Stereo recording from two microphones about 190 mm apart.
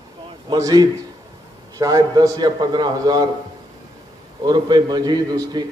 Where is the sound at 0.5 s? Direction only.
20° right (ahead or behind).